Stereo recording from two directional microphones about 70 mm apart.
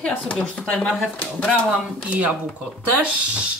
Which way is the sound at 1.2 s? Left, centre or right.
Left.